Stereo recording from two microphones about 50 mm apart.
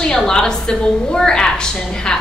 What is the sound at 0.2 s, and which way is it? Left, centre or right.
A woman's voice, centre.